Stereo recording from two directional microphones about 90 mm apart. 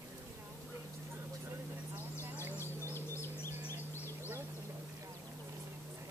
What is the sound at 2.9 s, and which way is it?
Bird, 30° left (ahead or behind).